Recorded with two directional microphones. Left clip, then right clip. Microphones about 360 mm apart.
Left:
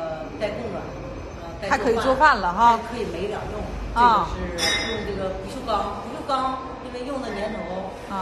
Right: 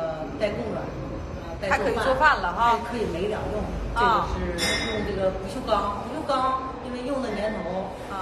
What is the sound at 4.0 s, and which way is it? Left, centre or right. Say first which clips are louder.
Speech: left 4 dB; centre.